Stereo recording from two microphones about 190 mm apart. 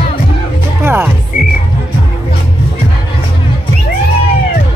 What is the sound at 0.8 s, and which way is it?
Music, 10° right (ahead or behind).